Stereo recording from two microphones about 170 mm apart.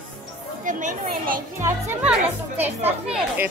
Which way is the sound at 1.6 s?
15° right (ahead or behind).